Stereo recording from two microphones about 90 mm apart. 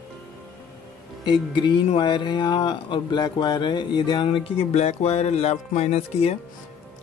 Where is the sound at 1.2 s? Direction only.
60° left (ahead or behind).